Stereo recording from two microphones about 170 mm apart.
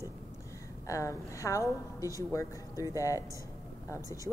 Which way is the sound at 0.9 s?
20° left (ahead or behind).